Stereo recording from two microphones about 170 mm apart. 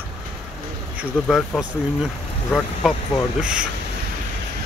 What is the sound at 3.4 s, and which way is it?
Speech, 5° right (ahead or behind).